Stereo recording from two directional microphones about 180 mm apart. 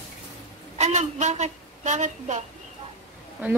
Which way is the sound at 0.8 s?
40° right (ahead or behind).